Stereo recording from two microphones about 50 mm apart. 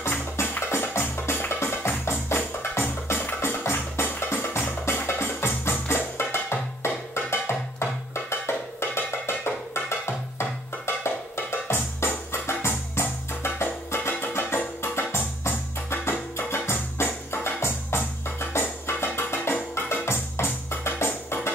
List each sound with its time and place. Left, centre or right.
0.0 s music: left